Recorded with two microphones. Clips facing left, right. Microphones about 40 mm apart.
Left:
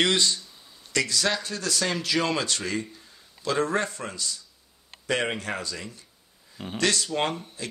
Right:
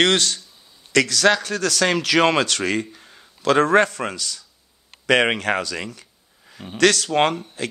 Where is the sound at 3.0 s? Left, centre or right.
Right.